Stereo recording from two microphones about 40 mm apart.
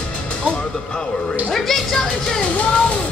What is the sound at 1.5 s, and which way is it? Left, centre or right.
Speech, centre.